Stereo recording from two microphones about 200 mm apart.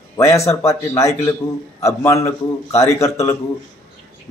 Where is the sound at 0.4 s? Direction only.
15° left (ahead or behind).